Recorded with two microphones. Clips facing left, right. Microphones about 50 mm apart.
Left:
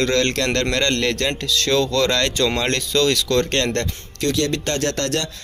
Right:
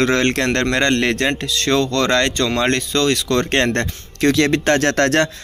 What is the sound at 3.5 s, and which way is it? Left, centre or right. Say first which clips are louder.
Speech: right 4 dB; centre.